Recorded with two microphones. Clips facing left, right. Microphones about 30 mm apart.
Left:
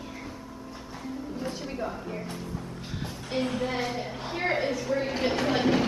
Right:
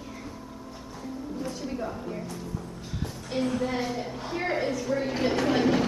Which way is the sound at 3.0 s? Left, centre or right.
Left.